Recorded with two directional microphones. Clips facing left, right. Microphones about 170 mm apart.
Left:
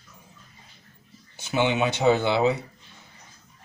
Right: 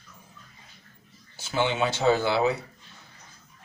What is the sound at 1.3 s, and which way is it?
Speech, 20° left (ahead or behind).